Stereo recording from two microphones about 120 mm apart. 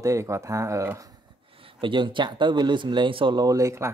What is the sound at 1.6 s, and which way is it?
Speech, 45° right (ahead or behind).